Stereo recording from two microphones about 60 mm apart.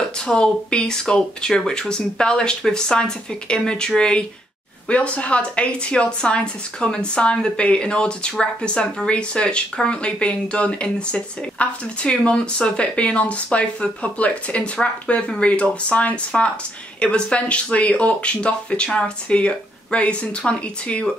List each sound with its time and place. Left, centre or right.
0.3 s a woman's voice: centre